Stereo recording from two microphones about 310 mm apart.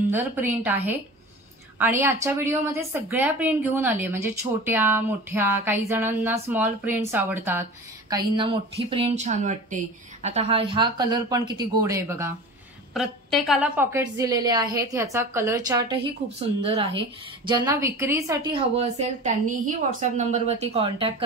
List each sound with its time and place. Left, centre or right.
0.1 s a woman's voice: centre
8.1 s a woman's voice: centre